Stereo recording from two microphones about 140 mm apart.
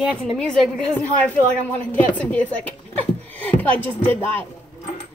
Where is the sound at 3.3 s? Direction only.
10° left (ahead or behind).